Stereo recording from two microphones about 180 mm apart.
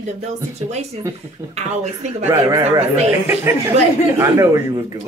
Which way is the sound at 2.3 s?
15° right (ahead or behind).